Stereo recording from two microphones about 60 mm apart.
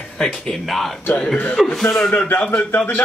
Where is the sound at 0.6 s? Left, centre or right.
Centre.